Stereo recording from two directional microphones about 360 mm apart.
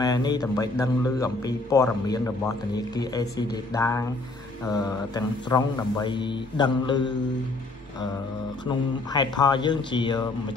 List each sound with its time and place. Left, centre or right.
0.0 s a man's voice: centre
8.6 s a man's voice: centre